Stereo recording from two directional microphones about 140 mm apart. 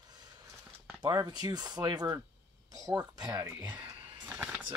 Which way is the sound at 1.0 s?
30° right (ahead or behind).